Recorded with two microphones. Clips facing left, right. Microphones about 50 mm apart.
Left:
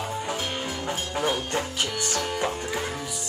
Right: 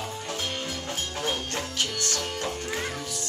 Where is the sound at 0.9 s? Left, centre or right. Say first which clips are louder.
Left 5 dB; centre.